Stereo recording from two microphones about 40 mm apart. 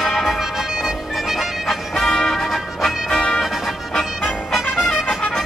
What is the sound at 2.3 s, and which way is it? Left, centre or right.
Music, centre.